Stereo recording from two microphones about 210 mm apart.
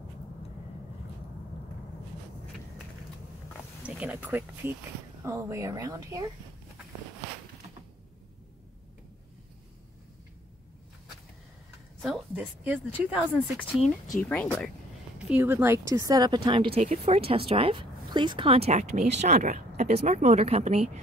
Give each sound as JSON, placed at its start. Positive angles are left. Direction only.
{"t": 3.8, "sound": "speech", "side_deg": -5}
{"t": 12.0, "sound": "a woman's voice", "side_deg": -5}
{"t": 14.1, "sound": "speech", "side_deg": 10}
{"t": 15.1, "sound": "speech", "side_deg": -5}